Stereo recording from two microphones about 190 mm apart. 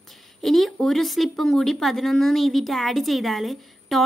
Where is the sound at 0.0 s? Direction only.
Centre (ahead or behind).